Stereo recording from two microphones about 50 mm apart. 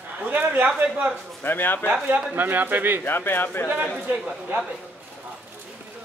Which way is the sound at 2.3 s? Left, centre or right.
Right.